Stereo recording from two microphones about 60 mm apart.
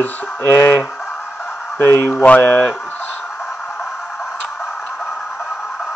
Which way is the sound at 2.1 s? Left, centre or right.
Left.